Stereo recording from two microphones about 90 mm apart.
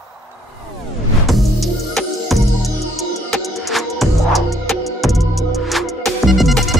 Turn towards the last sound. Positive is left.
turn(degrees=0)  # may be behind; listen again after turning